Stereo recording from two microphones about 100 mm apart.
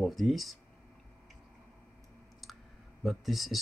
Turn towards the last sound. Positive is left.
turn(degrees=0)  # may be behind; listen again after turning